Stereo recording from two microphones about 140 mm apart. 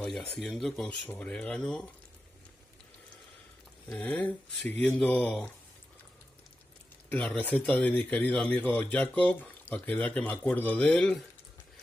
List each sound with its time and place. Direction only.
0.0 s speech: 5° left (ahead or behind)
3.9 s speech: 10° left (ahead or behind)
7.1 s speech: 10° left (ahead or behind)